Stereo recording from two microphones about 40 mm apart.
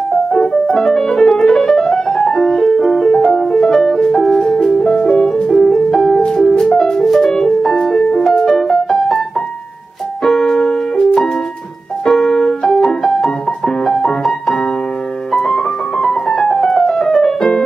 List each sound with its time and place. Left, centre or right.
0.3 s music: centre
4.5 s music: centre
10.2 s music: centre